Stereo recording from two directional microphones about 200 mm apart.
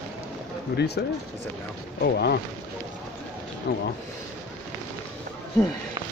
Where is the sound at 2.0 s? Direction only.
55° left (ahead or behind).